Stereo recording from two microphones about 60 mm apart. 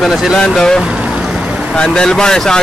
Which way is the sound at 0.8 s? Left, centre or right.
Centre.